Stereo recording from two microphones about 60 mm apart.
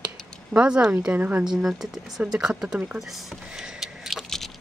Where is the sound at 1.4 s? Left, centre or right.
Centre.